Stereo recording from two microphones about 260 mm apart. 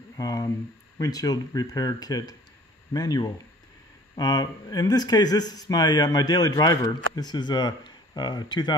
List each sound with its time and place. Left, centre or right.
0.2 s speech: centre